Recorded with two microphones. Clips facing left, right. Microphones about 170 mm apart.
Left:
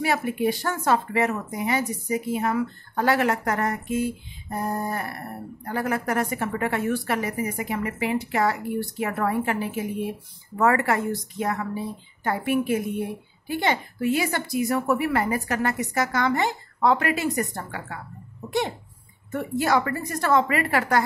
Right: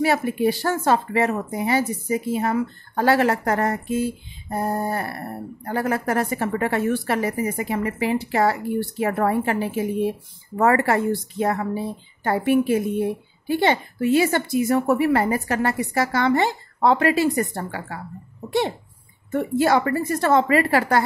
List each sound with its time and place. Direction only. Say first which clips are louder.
0.0 s a woman's voice: right 4 dB; 30° right (ahead or behind)
19.3 s a woman's voice: right 4 dB; 30° right (ahead or behind)